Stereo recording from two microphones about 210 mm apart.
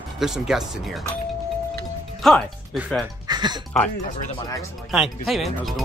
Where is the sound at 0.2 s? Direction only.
Centre (ahead or behind).